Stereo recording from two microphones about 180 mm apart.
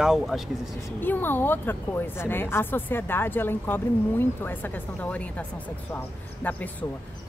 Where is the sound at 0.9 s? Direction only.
10° left (ahead or behind).